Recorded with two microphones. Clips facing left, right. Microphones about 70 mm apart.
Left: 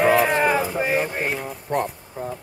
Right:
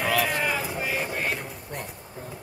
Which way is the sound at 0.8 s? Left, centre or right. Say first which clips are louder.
Left 6 dB; left.